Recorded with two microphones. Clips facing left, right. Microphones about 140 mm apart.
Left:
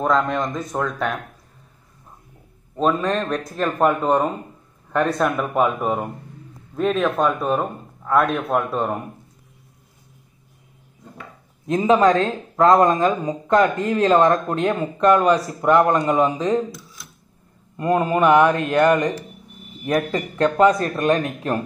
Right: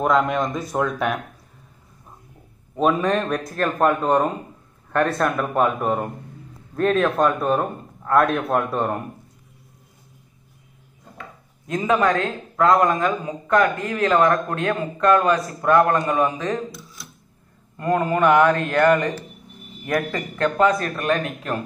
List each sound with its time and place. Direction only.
0.0 s speech: 10° right (ahead or behind)
2.7 s a man's voice: 5° right (ahead or behind)
11.6 s speech: 25° left (ahead or behind)
16.7 s a sound: centre (ahead or behind)
17.7 s speech: 20° left (ahead or behind)